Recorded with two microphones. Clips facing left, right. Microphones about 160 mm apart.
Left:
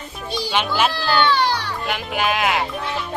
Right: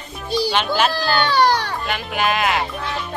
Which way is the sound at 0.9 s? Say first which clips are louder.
Even; 45° right (ahead or behind).